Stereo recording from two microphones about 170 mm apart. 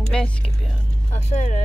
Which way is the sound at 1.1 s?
40° left (ahead or behind).